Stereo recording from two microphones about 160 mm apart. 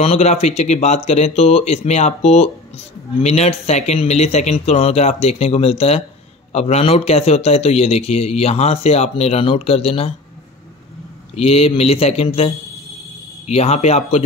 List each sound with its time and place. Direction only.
0.0 s a man's voice: 40° left (ahead or behind)
11.3 s a man's voice: 40° left (ahead or behind)
13.5 s a man's voice: 40° left (ahead or behind)